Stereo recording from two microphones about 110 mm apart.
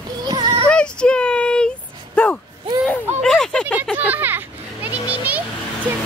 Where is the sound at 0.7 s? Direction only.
10° left (ahead or behind).